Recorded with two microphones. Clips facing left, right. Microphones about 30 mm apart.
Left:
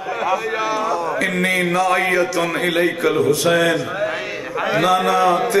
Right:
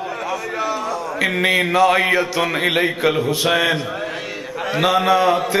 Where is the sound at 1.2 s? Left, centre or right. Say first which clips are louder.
Right 5 dB; centre.